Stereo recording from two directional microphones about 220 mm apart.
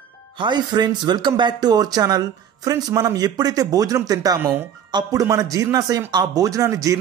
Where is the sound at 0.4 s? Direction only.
20° right (ahead or behind).